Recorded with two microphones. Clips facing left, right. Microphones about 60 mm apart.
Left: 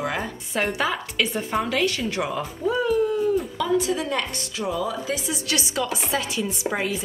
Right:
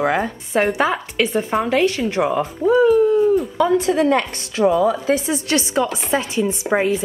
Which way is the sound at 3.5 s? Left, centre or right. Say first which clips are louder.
Right 7 dB; right.